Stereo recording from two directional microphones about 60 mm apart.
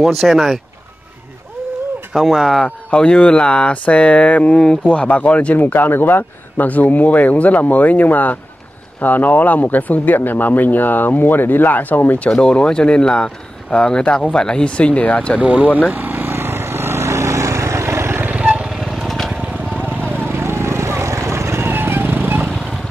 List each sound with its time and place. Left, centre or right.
0.0 s speech: centre
2.1 s speech: centre
2.6 s speech: centre
5.7 s speech: left
12.3 s speech: centre
15.4 s speech: right
15.9 s vehicle: right
18.2 s vehicle: right
18.8 s vehicle: centre
19.1 s lawn mower: centre
20.2 s vehicle: right